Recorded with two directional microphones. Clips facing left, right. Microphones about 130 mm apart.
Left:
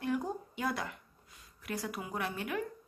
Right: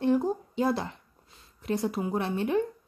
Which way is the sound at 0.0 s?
30° right (ahead or behind).